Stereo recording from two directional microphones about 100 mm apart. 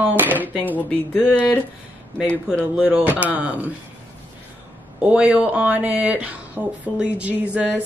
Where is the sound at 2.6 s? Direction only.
15° right (ahead or behind).